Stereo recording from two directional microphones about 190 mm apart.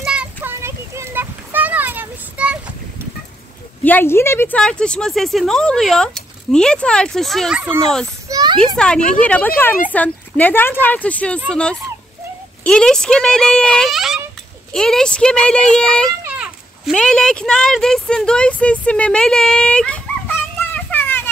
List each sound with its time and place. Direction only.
0.0 s a sound: 5° right (ahead or behind)
3.8 s speech: 10° left (ahead or behind)
8.3 s children playing: 20° right (ahead or behind)
8.7 s speech: 5° left (ahead or behind)
12.6 s speech: 5° left (ahead or behind)
16.3 s a sound: 5° right (ahead or behind)
16.9 s speech: 5° left (ahead or behind)
20.5 s children playing: 10° left (ahead or behind)